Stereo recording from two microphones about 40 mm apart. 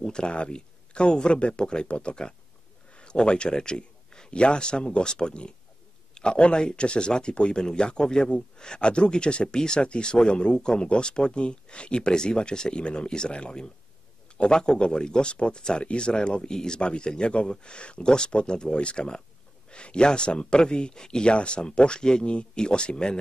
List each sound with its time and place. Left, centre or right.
0.0 s a man's voice: left